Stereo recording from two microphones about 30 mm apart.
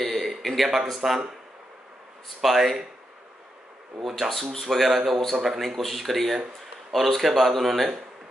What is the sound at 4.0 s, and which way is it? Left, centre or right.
Speech, centre.